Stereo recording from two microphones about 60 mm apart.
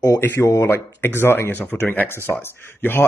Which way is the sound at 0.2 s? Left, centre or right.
Left.